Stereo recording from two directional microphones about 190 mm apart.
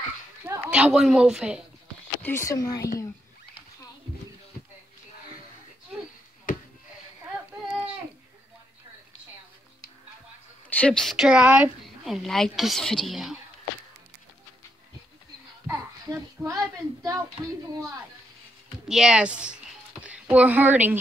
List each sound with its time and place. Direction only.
0.5 s a woman's voice: 5° right (ahead or behind)
2.2 s speech: 15° left (ahead or behind)
6.5 s a sound: 45° left (ahead or behind)
10.7 s a woman's voice: 5° left (ahead or behind)
15.6 s speech: 15° right (ahead or behind)
18.9 s a woman's voice: 5° right (ahead or behind)